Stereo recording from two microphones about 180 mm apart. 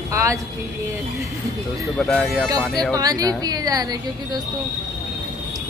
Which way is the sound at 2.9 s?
20° right (ahead or behind).